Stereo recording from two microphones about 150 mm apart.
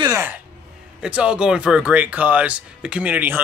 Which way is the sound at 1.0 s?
5° right (ahead or behind).